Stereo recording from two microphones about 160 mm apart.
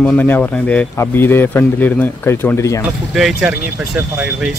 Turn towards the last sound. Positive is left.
turn(degrees=-10)  # may be behind; listen again after turning